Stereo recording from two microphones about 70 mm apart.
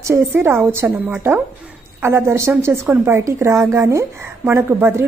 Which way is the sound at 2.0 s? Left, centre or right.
Right.